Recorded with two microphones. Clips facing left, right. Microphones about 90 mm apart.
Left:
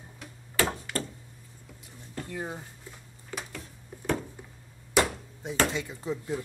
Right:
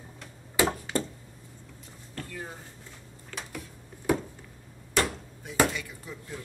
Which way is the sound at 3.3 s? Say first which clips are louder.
Left 2 dB; 15° left (ahead or behind).